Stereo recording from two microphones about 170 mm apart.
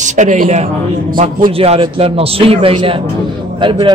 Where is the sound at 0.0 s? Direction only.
45° right (ahead or behind).